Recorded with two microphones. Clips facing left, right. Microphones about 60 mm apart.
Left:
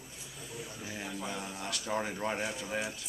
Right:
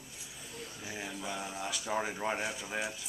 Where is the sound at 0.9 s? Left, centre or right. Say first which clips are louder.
Even; centre.